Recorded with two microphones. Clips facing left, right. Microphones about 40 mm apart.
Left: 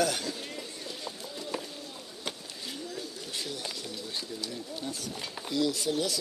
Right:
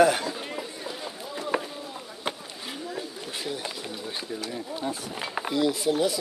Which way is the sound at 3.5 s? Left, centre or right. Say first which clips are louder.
Right 5 dB; right.